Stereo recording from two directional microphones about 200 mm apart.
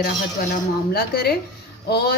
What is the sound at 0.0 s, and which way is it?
A woman's voice, 50° left (ahead or behind).